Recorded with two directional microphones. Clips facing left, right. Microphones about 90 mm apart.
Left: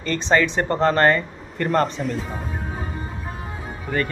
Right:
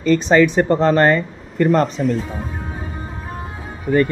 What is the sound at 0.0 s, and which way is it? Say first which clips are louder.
Speech: right 6 dB; 10° right (ahead or behind).